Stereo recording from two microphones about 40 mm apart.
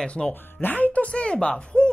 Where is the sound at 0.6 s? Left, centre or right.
Left.